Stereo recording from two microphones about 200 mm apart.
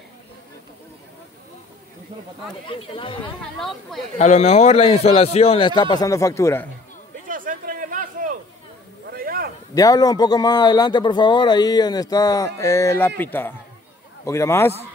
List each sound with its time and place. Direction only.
2.7 s a man's voice: 25° left (ahead or behind)
3.5 s speech: centre (ahead or behind)
4.2 s a man's voice: 35° left (ahead or behind); by 6.7 s 15° left (ahead or behind)
7.2 s a sound: 45° right (ahead or behind)
9.8 s a man's voice: 20° left (ahead or behind)